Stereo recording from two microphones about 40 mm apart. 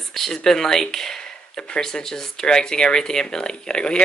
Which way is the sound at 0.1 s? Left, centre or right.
Centre.